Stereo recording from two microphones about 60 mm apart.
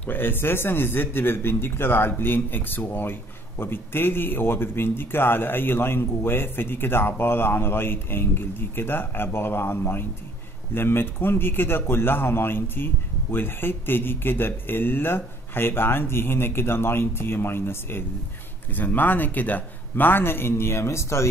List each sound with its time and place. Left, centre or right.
0.0 s speech: left